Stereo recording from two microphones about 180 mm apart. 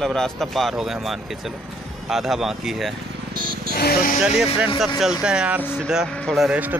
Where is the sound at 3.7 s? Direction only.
60° left (ahead or behind).